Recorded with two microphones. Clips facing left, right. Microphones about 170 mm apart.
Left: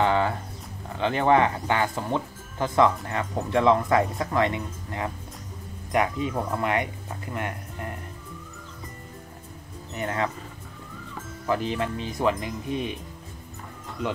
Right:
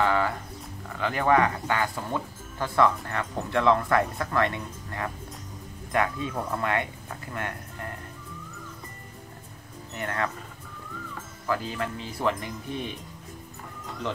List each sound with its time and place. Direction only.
0.0 s livestock: 25° left (ahead or behind)
0.9 s speech: 25° left (ahead or behind)
9.9 s speech: 20° left (ahead or behind)
11.4 s speech: 20° left (ahead or behind)